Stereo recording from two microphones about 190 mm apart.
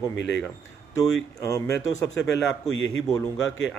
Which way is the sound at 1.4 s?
15° left (ahead or behind).